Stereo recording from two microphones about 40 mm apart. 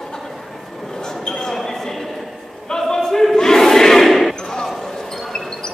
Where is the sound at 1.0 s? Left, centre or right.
Centre.